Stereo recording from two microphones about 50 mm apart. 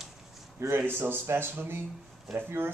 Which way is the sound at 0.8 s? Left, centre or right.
Right.